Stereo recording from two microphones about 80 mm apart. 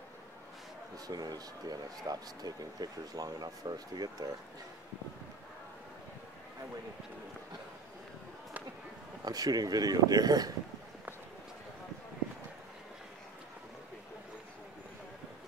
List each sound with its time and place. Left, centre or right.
1.0 s speech: right
9.2 s speech: right